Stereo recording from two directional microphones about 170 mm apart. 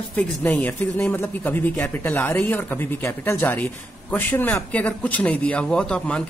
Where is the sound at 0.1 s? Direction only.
10° left (ahead or behind).